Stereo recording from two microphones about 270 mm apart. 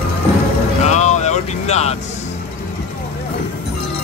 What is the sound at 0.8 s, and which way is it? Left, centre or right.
Music, left.